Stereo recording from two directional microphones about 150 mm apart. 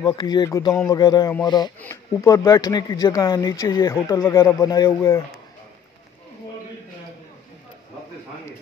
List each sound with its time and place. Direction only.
0.0 s speech: 30° left (ahead or behind)
1.8 s speech: 15° left (ahead or behind)